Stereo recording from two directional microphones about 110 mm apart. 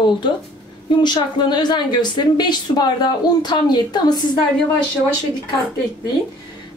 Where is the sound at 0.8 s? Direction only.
40° left (ahead or behind).